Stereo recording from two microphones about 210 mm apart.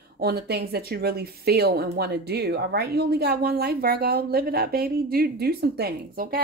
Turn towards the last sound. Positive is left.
turn(degrees=-45)  # may be behind; listen again after turning